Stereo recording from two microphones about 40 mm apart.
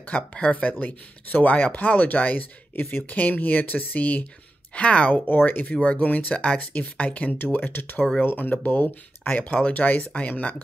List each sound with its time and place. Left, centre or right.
0.3 s speech: left
0.7 s speech: left
5.1 s speech: left